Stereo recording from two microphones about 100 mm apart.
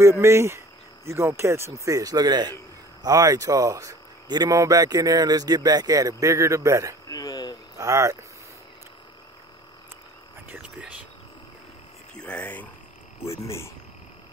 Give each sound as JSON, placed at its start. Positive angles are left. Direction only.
{"t": 0.0, "sound": "speech", "side_deg": -25}
{"t": 7.1, "sound": "a sound", "side_deg": 40}
{"t": 7.7, "sound": "speech", "side_deg": -30}
{"t": 10.5, "sound": "speech", "side_deg": -15}
{"t": 12.1, "sound": "speech", "side_deg": 10}
{"t": 13.2, "sound": "speech", "side_deg": 30}